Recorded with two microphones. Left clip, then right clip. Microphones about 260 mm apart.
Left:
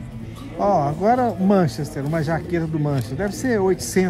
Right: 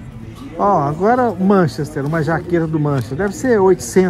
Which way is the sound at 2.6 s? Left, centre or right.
Centre.